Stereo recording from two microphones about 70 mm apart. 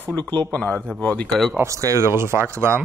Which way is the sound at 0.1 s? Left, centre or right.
Left.